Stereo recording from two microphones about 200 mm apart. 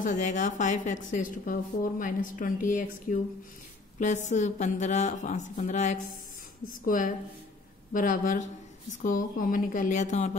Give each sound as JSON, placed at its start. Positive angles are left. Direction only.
{"t": 0.0, "sound": "a woman's voice", "side_deg": 35}